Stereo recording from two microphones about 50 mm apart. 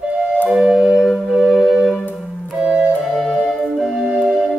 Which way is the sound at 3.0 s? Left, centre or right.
Centre.